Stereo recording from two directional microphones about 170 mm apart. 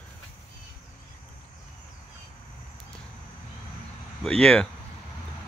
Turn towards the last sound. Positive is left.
turn(degrees=5)  # may be behind; listen again after turning